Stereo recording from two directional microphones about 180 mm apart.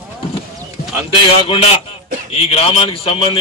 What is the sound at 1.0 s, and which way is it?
A man's voice, 30° left (ahead or behind).